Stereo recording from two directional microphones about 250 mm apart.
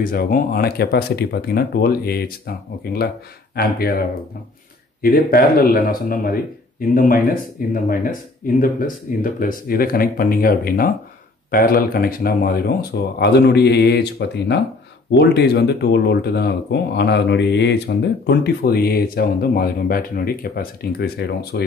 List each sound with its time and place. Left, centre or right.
0.0 s speech: left
5.0 s speech: left